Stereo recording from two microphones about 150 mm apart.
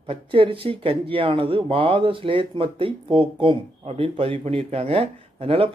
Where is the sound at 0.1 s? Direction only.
40° right (ahead or behind).